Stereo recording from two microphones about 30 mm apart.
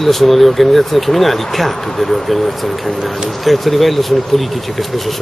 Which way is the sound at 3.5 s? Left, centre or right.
Centre.